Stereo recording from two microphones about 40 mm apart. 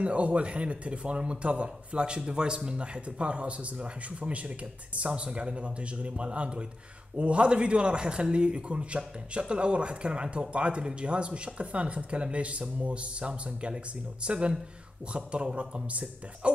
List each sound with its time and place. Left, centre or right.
0.0 s speech: right